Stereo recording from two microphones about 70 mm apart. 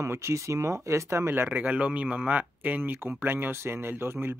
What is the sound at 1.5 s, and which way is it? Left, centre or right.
Speech, right.